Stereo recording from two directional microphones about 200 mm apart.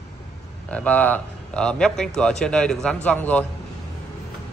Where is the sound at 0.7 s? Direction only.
5° left (ahead or behind).